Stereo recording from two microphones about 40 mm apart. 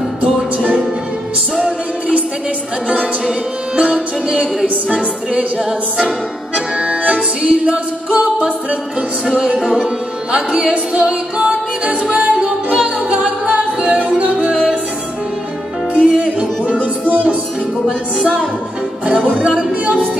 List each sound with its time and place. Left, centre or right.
3.7 s music: right
6.5 s accordion: right
9.3 s music: centre
11.8 s music: right
15.9 s music: right
19.7 s music: right